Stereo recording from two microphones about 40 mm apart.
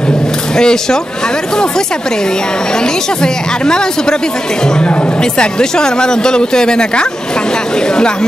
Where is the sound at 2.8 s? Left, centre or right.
Centre.